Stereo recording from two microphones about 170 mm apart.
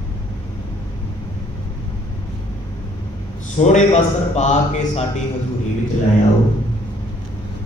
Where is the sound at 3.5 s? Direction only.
40° left (ahead or behind).